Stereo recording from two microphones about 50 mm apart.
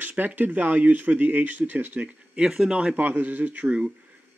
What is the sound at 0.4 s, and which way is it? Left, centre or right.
Speech, right.